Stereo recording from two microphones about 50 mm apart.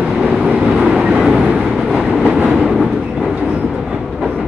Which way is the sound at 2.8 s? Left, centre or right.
Centre.